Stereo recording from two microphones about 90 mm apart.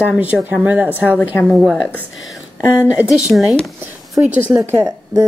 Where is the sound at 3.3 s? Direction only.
15° right (ahead or behind).